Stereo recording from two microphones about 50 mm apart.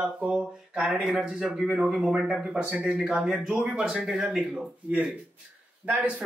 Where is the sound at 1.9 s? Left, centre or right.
Centre.